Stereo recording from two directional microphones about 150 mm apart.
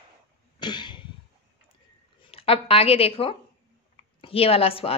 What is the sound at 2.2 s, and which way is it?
A woman's voice, 40° left (ahead or behind).